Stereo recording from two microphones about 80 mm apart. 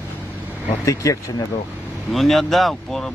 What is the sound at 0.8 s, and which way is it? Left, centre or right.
Speech, left.